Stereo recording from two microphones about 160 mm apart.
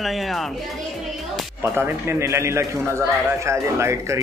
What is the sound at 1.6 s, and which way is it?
A man's voice, 15° right (ahead or behind).